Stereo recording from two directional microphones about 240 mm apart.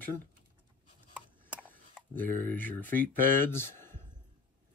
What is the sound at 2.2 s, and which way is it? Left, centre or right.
Speech, centre.